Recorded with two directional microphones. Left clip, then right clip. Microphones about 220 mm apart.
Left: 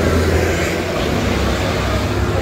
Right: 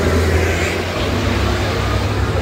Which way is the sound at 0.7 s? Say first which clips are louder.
Left 1 dB; 55° left (ahead or behind).